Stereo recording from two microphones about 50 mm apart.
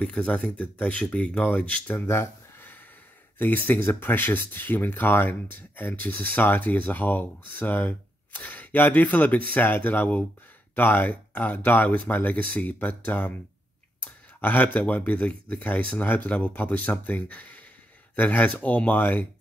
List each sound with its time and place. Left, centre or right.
0.0 s speech: left
2.0 s a sound: left
3.3 s speech: left
14.0 s clicking: left
14.9 s speech: left